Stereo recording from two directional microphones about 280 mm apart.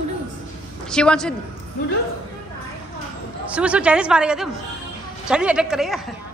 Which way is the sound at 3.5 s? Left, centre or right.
Centre.